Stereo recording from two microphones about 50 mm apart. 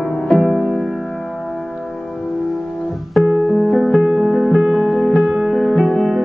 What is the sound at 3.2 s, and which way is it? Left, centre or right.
Music, centre.